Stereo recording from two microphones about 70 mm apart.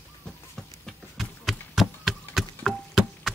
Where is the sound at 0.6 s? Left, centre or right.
Centre.